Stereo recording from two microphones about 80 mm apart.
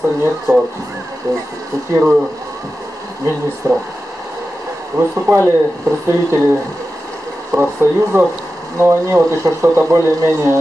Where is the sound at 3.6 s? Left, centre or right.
Right.